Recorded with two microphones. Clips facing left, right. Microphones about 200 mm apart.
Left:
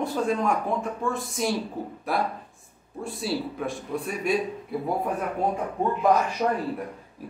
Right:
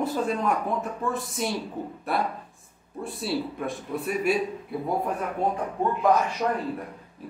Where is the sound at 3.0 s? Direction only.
Centre (ahead or behind).